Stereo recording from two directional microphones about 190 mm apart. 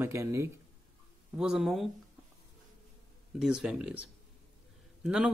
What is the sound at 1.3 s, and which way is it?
Speech, 5° right (ahead or behind).